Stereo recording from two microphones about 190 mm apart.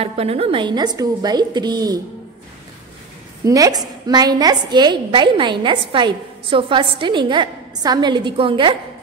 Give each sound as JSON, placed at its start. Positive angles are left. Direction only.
{"t": 0.0, "sound": "a woman's voice", "side_deg": -30}
{"t": 3.4, "sound": "a woman's voice", "side_deg": -20}